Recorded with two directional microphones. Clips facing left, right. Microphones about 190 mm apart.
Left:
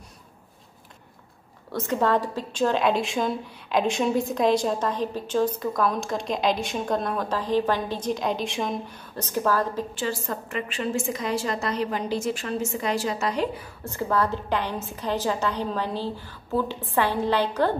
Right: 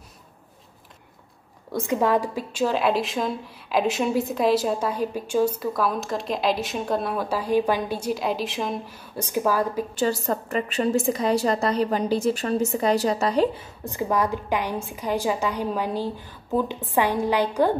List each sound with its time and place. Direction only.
1.7 s a woman's voice: 10° right (ahead or behind)
9.9 s a woman's voice: 40° right (ahead or behind)
13.8 s a woman's voice: 15° right (ahead or behind)